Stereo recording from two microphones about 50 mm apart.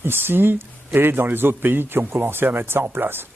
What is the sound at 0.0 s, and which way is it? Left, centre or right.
Speech, right.